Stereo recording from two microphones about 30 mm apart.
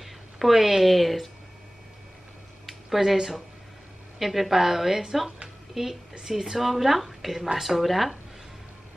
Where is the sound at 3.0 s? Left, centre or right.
Centre.